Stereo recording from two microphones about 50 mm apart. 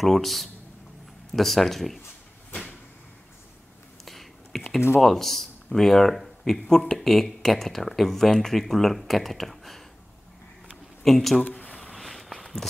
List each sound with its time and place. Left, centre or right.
0.0 s speech: centre
4.0 s whispering: centre
5.0 s a man's voice: centre
11.1 s speech: centre
11.5 s a sound: left
11.8 s walk: centre